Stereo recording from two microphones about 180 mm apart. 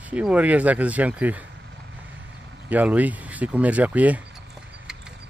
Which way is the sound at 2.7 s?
10° right (ahead or behind).